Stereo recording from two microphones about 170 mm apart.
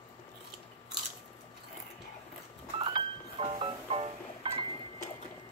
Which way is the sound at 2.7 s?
30° right (ahead or behind).